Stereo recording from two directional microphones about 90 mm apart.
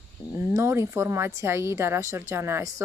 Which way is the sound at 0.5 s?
30° right (ahead or behind).